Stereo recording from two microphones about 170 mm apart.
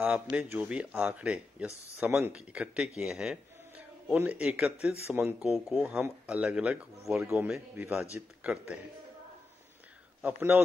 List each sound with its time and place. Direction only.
0.0 s a man's voice: 5° right (ahead or behind)
10.2 s speech: 10° right (ahead or behind)